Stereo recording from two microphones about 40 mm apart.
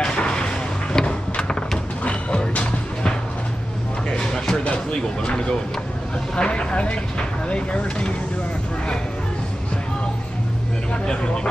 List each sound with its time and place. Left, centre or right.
0.0 s a sound: left
2.0 s music: left
5.3 s speech: left
10.9 s speech: left